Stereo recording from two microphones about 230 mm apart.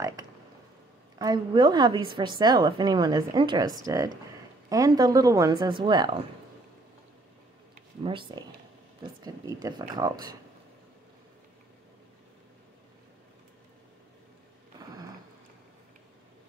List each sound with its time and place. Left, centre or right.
0.0 s a woman's voice: centre
8.0 s a woman's voice: right